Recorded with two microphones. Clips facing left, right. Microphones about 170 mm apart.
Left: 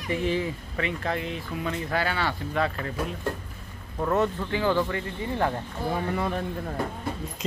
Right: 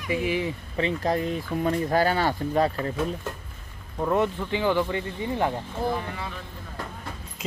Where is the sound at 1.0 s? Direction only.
40° right (ahead or behind).